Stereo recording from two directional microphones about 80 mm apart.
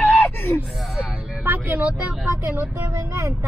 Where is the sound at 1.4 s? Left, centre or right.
Right.